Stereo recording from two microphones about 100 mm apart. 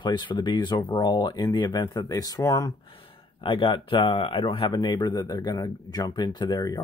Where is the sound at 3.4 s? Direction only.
55° left (ahead or behind).